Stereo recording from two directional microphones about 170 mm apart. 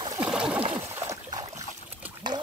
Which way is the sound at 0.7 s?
15° right (ahead or behind).